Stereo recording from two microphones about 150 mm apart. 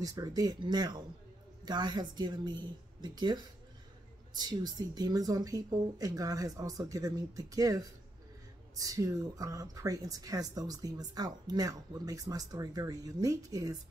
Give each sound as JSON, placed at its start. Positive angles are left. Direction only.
{"t": 0.0, "sound": "speech", "side_deg": -25}
{"t": 4.4, "sound": "speech", "side_deg": -25}